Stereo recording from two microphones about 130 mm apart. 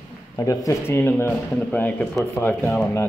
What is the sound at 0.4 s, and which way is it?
Speech, 25° left (ahead or behind).